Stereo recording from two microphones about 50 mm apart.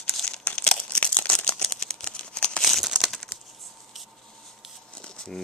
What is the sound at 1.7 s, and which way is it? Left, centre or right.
Scissors, centre.